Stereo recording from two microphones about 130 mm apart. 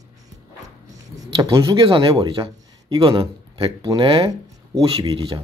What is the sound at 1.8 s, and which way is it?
A man's voice, 40° right (ahead or behind).